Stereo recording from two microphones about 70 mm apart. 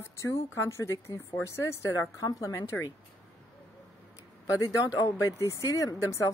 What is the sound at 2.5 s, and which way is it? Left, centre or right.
Speech, left.